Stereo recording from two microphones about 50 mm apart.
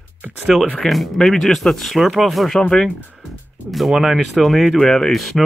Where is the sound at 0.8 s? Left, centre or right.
Centre.